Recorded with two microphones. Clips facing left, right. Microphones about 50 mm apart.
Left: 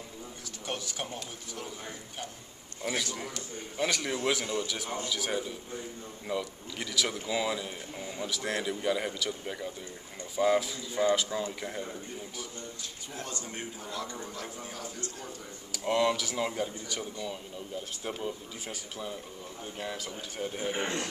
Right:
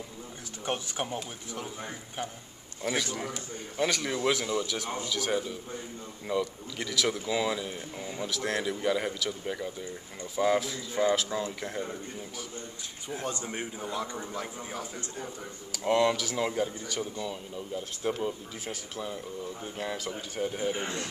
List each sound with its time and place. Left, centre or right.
0.7 s a man's voice: right
2.8 s speech: centre
13.1 s a man's voice: right
15.7 s speech: centre
20.6 s speech: left